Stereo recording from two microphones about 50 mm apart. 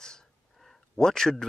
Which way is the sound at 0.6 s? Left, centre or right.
Centre.